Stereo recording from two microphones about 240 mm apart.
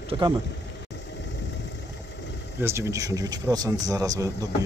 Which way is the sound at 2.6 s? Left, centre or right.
Centre.